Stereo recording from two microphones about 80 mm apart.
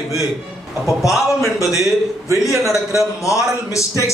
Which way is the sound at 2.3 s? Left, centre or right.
Left.